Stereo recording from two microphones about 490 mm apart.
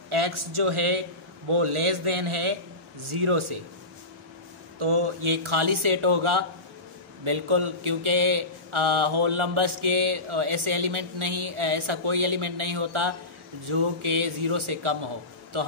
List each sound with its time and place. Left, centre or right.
0.1 s a man's voice: right
3.0 s mantra: right
4.7 s mantra: right